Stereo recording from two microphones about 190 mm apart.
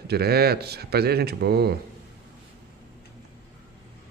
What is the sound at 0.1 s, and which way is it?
A man's voice, 55° right (ahead or behind).